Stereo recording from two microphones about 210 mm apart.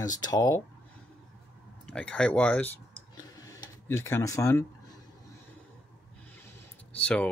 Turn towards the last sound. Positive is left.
turn(degrees=5)  # may be behind; listen again after turning